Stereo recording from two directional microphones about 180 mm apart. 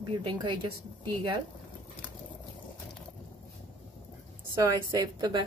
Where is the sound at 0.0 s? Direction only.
30° right (ahead or behind).